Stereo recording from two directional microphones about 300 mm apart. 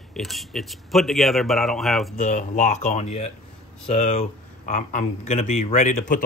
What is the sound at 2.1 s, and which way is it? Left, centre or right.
Speech, left.